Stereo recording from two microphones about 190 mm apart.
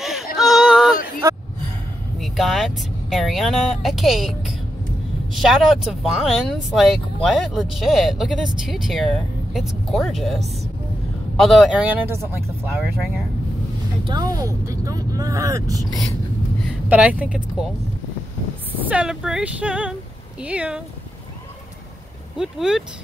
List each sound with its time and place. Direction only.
0.0 s a sound: centre (ahead or behind)
2.1 s speech: centre (ahead or behind)
14.0 s speech: 20° right (ahead or behind)
16.9 s speech: 10° right (ahead or behind)
18.8 s speech: 5° right (ahead or behind)
22.4 s speech: 5° right (ahead or behind)